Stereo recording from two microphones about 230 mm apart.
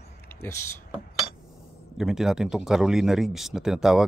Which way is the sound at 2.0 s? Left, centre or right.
Centre.